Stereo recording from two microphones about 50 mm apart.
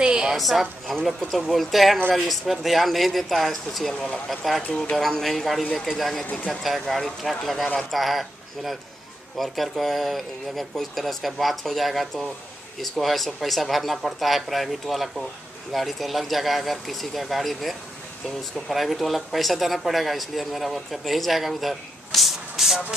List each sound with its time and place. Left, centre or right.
0.0 s a sound: centre
0.4 s speech: centre
6.3 s speech: left
6.6 s speech: centre